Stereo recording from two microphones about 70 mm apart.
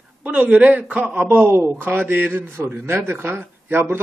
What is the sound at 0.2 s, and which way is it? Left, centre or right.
Speech, centre.